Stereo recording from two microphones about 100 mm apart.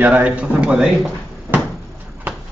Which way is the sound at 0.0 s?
15° right (ahead or behind).